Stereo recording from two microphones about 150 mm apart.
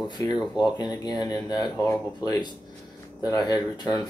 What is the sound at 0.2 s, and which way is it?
Speech, 20° left (ahead or behind).